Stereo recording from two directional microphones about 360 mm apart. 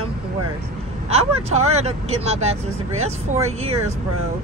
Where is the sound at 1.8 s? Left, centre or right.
Centre.